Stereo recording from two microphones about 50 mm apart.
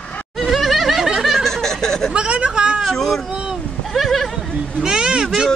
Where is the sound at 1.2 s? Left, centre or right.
Centre.